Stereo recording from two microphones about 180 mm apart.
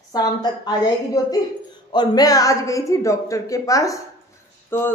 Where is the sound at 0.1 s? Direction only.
20° left (ahead or behind).